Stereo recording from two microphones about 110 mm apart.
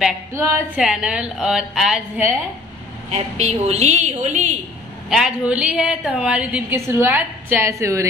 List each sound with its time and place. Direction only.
0.3 s a woman's voice: 25° right (ahead or behind)
0.7 s a woman's voice: 5° right (ahead or behind)
3.1 s a woman's voice: 85° right
5.1 s a woman's voice: 5° right (ahead or behind)
6.7 s a woman's voice: 20° right (ahead or behind)